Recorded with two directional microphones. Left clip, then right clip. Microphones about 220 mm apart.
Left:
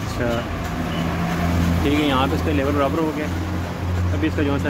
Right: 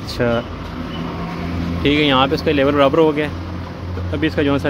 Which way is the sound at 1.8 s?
40° right (ahead or behind).